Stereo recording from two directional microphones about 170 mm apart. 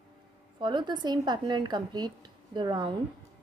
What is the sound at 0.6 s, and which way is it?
A woman's voice, 25° right (ahead or behind).